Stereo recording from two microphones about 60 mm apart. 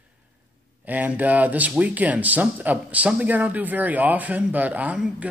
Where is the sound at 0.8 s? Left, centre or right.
Right.